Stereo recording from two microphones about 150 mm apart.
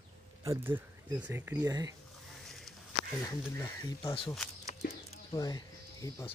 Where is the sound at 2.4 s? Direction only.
Centre (ahead or behind).